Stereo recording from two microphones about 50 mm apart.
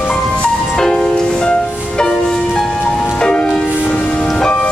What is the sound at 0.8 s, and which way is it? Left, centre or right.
Music, centre.